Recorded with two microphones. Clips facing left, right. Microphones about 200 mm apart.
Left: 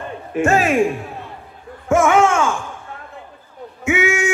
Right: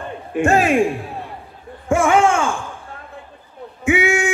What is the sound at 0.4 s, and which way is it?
Speech, 30° right (ahead or behind).